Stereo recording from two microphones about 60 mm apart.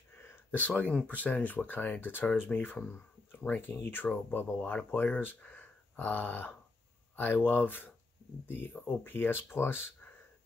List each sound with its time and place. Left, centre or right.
0.1 s speech: left